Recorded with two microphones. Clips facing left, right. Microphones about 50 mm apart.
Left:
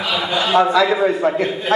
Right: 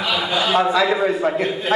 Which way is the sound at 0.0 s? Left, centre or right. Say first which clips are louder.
Left 1 dB; centre.